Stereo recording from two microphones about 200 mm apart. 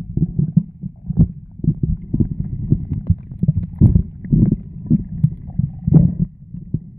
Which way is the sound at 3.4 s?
Centre (ahead or behind).